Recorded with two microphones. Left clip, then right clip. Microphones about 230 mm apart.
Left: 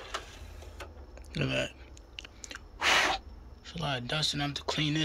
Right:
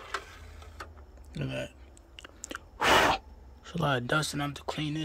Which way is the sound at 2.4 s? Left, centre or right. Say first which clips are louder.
Right 2 dB; right.